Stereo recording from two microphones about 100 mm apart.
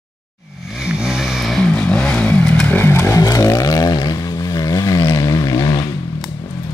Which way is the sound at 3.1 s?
35° left (ahead or behind).